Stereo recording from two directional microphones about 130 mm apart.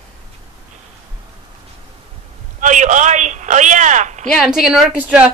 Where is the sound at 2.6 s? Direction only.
75° right (ahead or behind).